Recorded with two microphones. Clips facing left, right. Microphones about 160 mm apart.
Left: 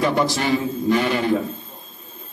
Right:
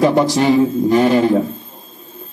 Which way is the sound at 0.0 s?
30° right (ahead or behind).